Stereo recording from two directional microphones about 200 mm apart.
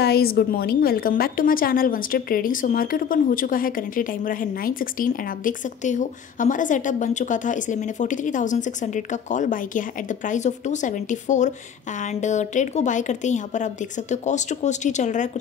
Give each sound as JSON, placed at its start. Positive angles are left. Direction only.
{"t": 0.0, "sound": "a woman's voice", "side_deg": 50}